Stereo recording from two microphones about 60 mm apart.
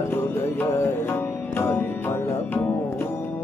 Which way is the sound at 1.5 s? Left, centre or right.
Left.